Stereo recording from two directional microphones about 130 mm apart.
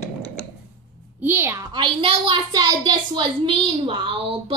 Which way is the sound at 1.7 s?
40° right (ahead or behind).